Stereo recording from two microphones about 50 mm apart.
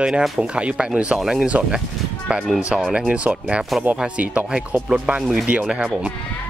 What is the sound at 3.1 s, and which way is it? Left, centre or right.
Speech, right.